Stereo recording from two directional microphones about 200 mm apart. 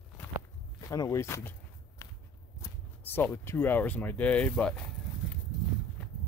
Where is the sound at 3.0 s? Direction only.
10° left (ahead or behind).